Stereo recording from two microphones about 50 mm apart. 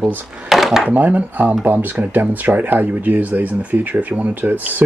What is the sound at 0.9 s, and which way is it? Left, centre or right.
Speech, right.